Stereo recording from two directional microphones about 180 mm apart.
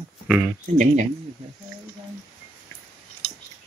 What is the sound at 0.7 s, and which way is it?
Speech, 45° right (ahead or behind).